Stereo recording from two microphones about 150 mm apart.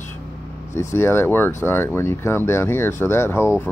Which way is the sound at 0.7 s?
15° left (ahead or behind).